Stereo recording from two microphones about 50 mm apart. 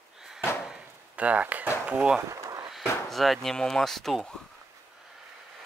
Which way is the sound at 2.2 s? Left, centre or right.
Right.